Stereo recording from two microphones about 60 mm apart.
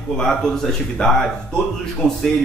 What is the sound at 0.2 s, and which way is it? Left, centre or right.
Speech, centre.